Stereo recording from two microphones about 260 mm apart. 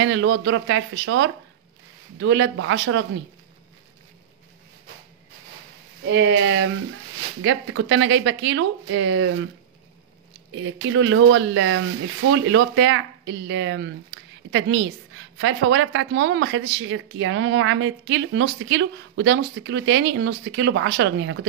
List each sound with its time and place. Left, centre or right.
0.0 s speech: right
6.0 s speech: right
10.5 s speech: right